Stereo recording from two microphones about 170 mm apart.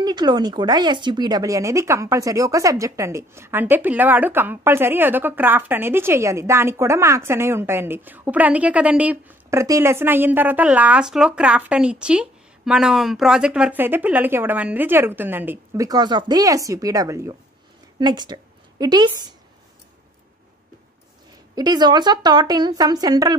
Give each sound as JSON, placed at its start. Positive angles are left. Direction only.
{"t": 0.0, "sound": "a woman's voice", "side_deg": -25}
{"t": 21.5, "sound": "a woman's voice", "side_deg": -25}